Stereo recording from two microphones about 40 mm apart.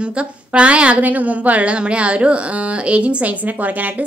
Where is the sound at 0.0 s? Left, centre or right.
Right.